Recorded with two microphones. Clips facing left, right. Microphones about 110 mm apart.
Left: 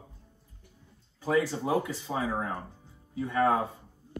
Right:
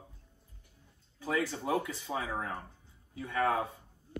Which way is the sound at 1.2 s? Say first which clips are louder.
Left 6 dB; 35° left (ahead or behind).